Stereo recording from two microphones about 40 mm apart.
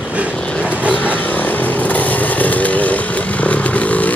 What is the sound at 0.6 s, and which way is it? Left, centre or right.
Vehicle, right.